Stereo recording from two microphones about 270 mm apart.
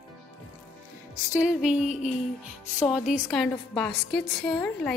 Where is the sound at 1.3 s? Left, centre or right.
Centre.